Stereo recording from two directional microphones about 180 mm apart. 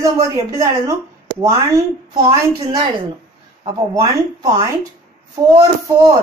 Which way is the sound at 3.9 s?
20° right (ahead or behind).